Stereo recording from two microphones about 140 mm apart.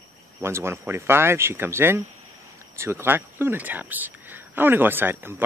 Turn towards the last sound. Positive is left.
turn(degrees=-15)  # may be behind; listen again after turning